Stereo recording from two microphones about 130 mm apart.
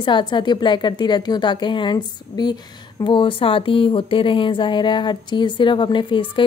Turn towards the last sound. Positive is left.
turn(degrees=40)  # may be behind; listen again after turning